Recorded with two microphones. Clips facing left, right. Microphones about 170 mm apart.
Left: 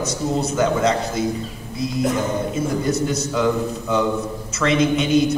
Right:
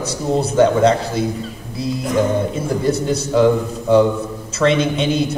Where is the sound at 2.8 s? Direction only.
30° right (ahead or behind).